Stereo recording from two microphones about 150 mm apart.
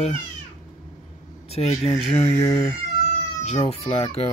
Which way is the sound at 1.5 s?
45° left (ahead or behind).